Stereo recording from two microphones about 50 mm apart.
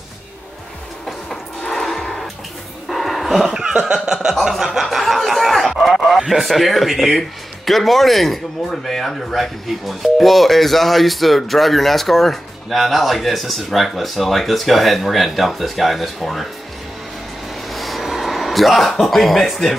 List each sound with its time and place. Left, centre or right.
1.7 s music: centre
2.9 s dog: centre
3.9 s chuckle: centre
5.8 s speech: centre
17.6 s a sound: centre